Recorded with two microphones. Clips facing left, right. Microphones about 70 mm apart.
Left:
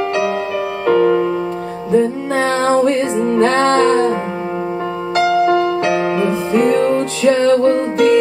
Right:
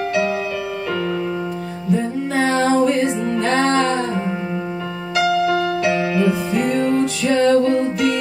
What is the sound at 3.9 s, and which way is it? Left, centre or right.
Music, left.